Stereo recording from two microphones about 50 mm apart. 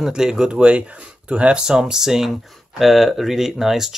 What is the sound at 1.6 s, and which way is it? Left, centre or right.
Speech, centre.